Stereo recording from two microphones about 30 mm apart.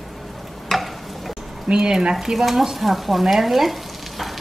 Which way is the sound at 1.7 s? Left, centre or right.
Right.